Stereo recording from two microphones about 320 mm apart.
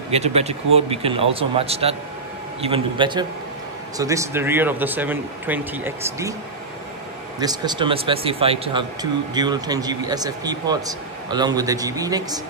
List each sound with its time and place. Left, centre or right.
0.1 s speech: centre
7.3 s speech: centre